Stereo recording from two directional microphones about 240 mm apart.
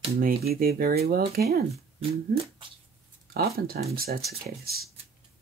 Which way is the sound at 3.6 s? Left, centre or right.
Right.